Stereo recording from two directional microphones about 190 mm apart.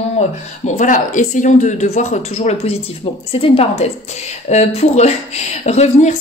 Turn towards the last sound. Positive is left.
turn(degrees=35)  # may be behind; listen again after turning